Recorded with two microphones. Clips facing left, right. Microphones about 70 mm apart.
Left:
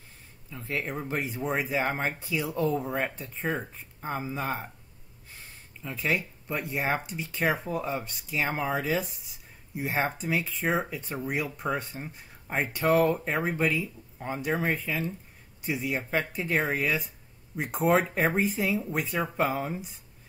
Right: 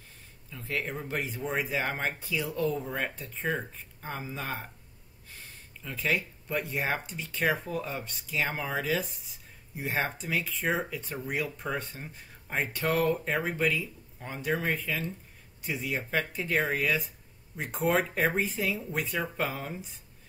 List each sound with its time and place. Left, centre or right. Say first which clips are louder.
0.5 s speech: left 1 dB; centre
5.9 s speech: left 1 dB; centre